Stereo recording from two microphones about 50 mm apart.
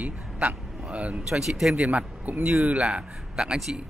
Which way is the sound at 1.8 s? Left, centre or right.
Right.